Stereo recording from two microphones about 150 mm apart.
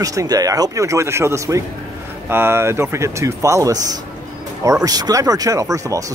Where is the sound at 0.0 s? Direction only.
20° right (ahead or behind).